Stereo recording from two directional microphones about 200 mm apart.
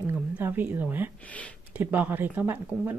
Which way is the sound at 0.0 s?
10° right (ahead or behind).